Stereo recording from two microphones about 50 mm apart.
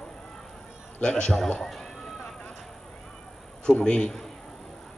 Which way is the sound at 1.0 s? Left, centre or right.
Centre.